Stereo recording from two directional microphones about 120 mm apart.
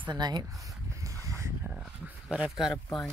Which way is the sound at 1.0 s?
25° right (ahead or behind).